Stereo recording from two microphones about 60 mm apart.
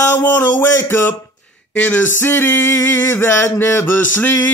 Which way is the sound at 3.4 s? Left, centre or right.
Left.